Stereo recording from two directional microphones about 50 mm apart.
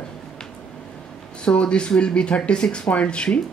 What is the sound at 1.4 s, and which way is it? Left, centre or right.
Speech, left.